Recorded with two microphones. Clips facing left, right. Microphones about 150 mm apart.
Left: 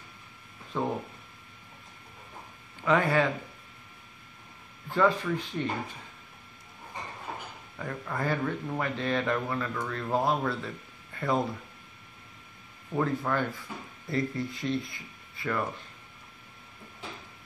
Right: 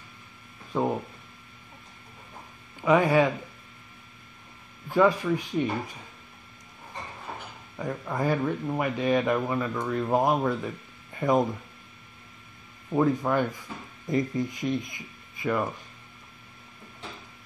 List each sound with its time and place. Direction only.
0.7 s speech: 15° right (ahead or behind)
2.8 s speech: 15° right (ahead or behind)
4.8 s speech: 10° right (ahead or behind)
7.7 s speech: 15° right (ahead or behind)
12.9 s speech: 15° right (ahead or behind)